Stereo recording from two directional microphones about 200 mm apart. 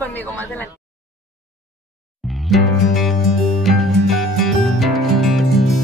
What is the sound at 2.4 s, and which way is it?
Music, centre (ahead or behind).